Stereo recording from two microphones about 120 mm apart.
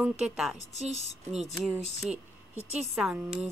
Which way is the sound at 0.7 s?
65° right (ahead or behind).